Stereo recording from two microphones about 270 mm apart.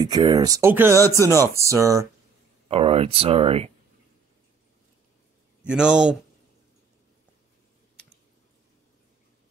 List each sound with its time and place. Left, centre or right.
0.0 s speech: centre
2.7 s speech: right
5.7 s speech: centre